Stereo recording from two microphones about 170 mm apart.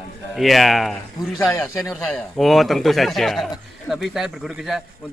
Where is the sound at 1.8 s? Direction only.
20° left (ahead or behind).